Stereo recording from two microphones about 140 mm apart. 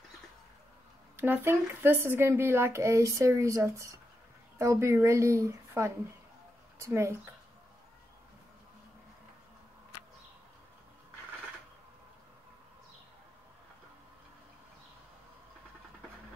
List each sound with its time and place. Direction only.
1.1 s a woman's voice: 15° right (ahead or behind)